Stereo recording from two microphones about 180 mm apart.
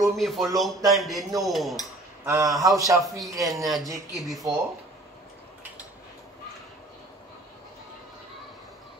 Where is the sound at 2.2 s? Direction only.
15° right (ahead or behind).